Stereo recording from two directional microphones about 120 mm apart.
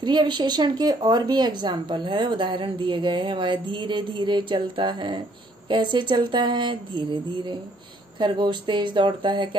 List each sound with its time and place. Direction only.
0.0 s speech: 40° right (ahead or behind)